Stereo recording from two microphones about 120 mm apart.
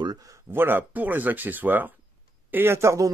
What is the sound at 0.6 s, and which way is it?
Speech, 15° right (ahead or behind).